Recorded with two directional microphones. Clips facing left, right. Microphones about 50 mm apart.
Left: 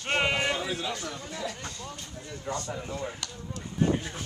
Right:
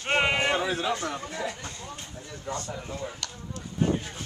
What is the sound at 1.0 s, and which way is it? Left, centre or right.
Chatter, right.